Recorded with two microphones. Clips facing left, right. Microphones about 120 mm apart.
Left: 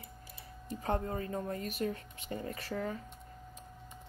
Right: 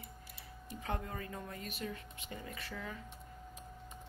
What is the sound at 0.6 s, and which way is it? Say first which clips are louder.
Speech: left 7 dB; 35° left (ahead or behind).